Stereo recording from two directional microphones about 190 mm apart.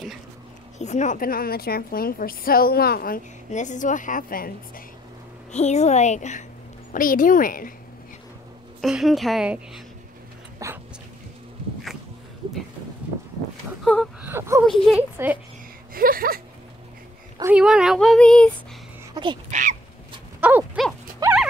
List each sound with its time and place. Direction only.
0.7 s a woman's voice: 40° left (ahead or behind)
5.5 s a woman's voice: 35° left (ahead or behind)
8.8 s speech: centre (ahead or behind)
10.6 s a sound: 15° right (ahead or behind)
14.2 s whimper: 15° right (ahead or behind)
14.7 s speech: centre (ahead or behind)
15.9 s speech: 50° right (ahead or behind)
17.4 s speech: 5° right (ahead or behind)
19.2 s a sound: 20° right (ahead or behind)
19.5 s crow: 35° right (ahead or behind)
20.3 s horse: 10° right (ahead or behind)